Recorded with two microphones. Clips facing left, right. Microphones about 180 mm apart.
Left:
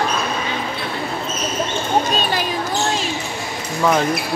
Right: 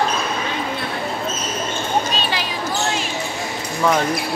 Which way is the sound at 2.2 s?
45° left (ahead or behind).